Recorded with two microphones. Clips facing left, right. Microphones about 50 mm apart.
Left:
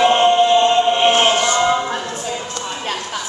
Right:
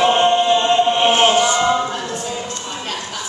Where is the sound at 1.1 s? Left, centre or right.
Centre.